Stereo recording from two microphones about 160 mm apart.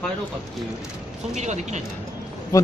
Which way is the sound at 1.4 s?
45° right (ahead or behind).